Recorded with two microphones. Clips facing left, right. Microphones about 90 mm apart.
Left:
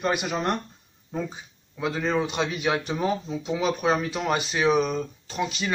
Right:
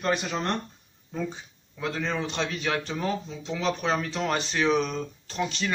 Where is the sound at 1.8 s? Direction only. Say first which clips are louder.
Left 4 dB; 10° left (ahead or behind).